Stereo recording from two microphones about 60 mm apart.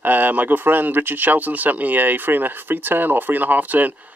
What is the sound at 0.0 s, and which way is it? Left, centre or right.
Speech, right.